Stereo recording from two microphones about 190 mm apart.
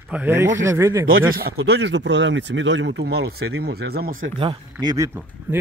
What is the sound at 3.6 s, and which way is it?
Speech, 55° right (ahead or behind).